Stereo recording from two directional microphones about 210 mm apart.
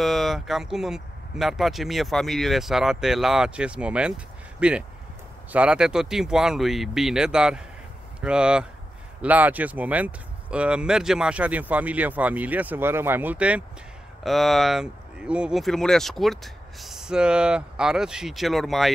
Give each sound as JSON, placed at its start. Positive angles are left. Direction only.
{"t": 0.0, "sound": "speech", "side_deg": 0}